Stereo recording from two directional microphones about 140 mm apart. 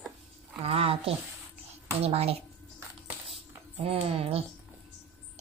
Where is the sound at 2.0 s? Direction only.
45° right (ahead or behind).